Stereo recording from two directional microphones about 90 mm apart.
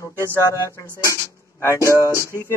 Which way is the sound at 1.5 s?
35° left (ahead or behind).